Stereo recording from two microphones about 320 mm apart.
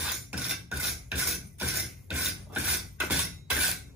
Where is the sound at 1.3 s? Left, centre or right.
Centre.